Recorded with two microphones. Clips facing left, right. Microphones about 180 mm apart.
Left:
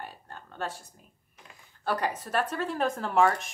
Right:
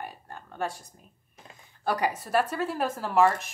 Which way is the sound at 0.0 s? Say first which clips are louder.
Right 3 dB; 10° right (ahead or behind).